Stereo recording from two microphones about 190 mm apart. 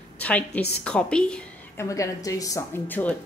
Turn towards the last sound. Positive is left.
turn(degrees=10)  # may be behind; listen again after turning